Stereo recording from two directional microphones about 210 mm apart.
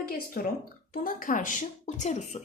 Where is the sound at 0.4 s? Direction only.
40° left (ahead or behind).